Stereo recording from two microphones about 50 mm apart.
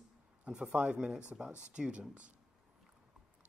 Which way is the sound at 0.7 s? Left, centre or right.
Centre.